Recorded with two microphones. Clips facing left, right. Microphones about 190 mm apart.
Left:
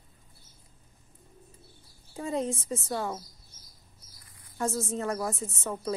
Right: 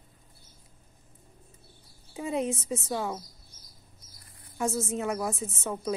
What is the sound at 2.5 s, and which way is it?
Speech, centre (ahead or behind).